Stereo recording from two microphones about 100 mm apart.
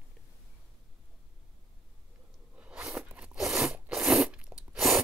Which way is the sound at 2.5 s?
10° right (ahead or behind).